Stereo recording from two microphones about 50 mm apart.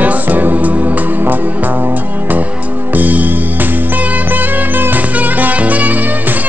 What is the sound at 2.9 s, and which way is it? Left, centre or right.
Music, right.